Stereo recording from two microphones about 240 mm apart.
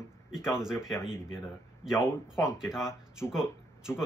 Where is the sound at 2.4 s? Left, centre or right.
Centre.